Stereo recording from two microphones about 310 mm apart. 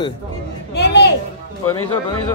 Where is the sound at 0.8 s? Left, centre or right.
Left.